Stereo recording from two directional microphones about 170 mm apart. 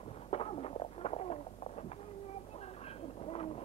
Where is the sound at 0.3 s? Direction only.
35° left (ahead or behind).